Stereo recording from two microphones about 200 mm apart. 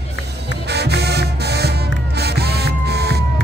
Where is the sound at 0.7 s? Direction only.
55° right (ahead or behind).